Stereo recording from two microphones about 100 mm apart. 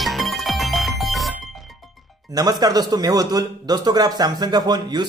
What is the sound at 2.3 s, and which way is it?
Speech, 40° right (ahead or behind).